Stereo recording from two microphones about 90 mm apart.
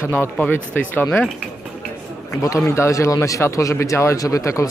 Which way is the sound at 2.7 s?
35° left (ahead or behind).